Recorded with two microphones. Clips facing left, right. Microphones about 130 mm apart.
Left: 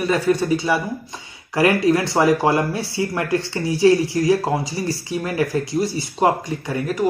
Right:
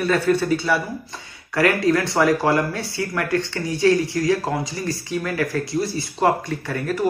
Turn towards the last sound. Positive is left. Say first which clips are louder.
# left 1 dB
turn(degrees=15)  # may be behind; listen again after turning